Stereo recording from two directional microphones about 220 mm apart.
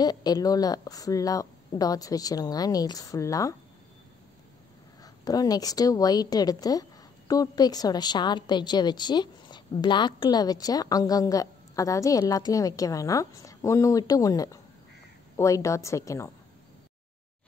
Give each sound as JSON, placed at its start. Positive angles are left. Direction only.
{"t": 0.0, "sound": "a woman's voice", "side_deg": 15}
{"t": 5.0, "sound": "a woman's voice", "side_deg": 15}